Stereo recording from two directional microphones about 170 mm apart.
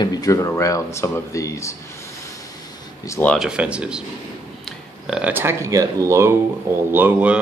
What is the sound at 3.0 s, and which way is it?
Speech, 15° left (ahead or behind).